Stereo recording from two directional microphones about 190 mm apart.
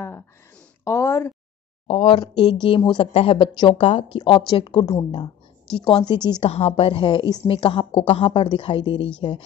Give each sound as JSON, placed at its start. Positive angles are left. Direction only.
{"t": 0.8, "sound": "speech", "side_deg": 15}
{"t": 1.9, "sound": "a woman's voice", "side_deg": 30}